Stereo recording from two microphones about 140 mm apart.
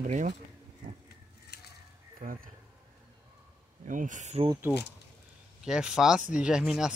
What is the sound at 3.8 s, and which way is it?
Speech, 65° right (ahead or behind).